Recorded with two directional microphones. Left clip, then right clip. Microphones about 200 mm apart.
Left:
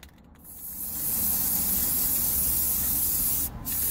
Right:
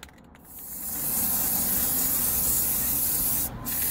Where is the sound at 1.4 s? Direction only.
Centre (ahead or behind).